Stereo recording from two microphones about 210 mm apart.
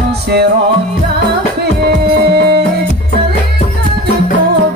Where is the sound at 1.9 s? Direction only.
50° right (ahead or behind).